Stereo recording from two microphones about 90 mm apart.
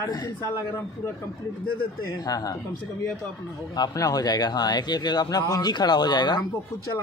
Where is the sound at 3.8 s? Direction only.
45° left (ahead or behind).